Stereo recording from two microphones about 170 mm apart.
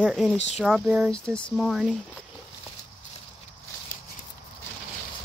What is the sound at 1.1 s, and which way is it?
Speech, 5° left (ahead or behind).